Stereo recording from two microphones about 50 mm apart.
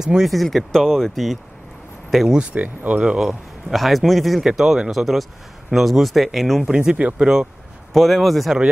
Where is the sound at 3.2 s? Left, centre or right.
Centre.